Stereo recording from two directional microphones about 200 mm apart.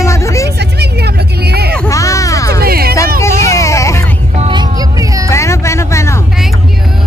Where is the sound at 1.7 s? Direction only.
15° left (ahead or behind).